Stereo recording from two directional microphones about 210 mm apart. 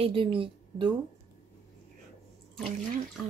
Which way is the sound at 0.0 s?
25° right (ahead or behind).